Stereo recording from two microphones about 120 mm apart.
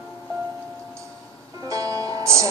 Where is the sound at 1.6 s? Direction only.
30° right (ahead or behind).